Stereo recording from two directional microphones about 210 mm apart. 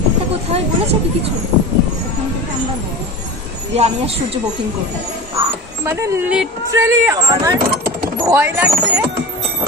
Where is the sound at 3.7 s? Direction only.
30° right (ahead or behind).